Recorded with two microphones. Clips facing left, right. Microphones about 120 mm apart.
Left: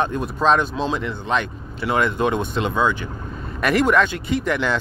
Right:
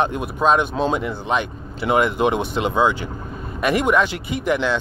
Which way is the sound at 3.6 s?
5° right (ahead or behind).